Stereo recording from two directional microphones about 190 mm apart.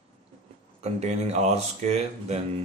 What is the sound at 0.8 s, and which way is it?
Speech, 35° right (ahead or behind).